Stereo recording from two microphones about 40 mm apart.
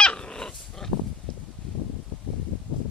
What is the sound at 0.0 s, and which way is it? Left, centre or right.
Dog, left.